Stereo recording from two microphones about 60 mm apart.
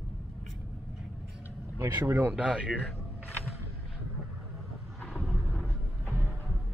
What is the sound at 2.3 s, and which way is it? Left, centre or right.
Speech, centre.